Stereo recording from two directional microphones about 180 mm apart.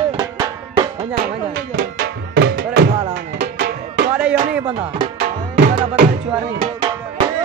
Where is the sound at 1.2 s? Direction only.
50° right (ahead or behind).